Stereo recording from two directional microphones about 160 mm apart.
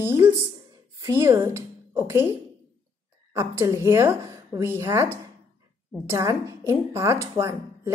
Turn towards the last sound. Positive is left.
turn(degrees=-15)  # may be behind; listen again after turning